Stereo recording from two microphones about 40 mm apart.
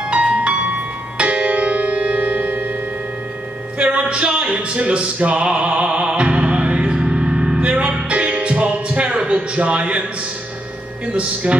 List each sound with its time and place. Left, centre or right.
0.1 s music: right
3.7 s music: right
11.1 s speech: right